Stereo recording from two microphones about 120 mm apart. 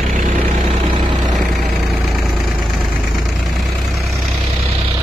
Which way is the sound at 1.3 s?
Centre (ahead or behind).